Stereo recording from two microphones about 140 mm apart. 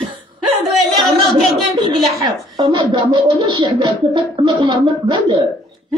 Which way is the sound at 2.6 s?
35° right (ahead or behind).